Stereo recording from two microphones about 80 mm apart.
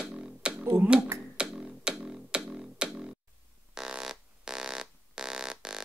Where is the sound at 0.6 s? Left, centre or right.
Right.